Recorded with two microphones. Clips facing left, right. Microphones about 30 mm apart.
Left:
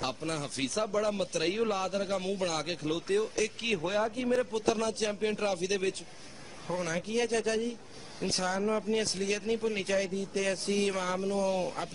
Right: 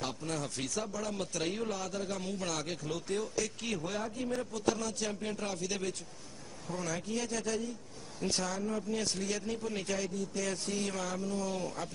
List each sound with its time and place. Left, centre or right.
0.0 s a man's voice: left